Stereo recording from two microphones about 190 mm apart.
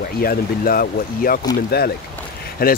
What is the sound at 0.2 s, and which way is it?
Speech, 50° left (ahead or behind).